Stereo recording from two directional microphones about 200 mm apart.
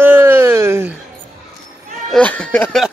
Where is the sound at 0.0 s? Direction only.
10° right (ahead or behind).